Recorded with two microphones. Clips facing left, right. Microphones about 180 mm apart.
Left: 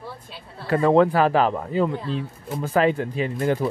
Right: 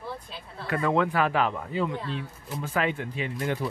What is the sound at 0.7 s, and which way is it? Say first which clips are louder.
Speech: left 8 dB; 35° left (ahead or behind).